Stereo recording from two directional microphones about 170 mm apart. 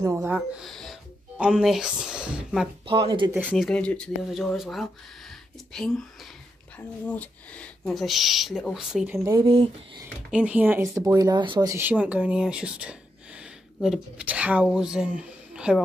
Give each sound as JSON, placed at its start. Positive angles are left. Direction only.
{"t": 0.0, "sound": "speech", "side_deg": -15}
{"t": 2.9, "sound": "speech", "side_deg": -30}
{"t": 3.3, "sound": "speech", "side_deg": -5}
{"t": 7.1, "sound": "speech", "side_deg": 5}
{"t": 9.3, "sound": "speech", "side_deg": -25}
{"t": 10.3, "sound": "speech", "side_deg": -5}
{"t": 11.7, "sound": "speech", "side_deg": -10}